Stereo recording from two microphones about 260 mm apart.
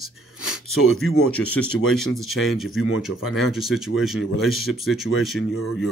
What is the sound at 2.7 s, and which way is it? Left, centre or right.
Speech, left.